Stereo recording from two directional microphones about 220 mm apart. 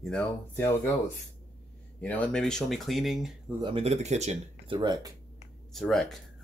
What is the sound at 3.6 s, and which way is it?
Speech, 25° right (ahead or behind).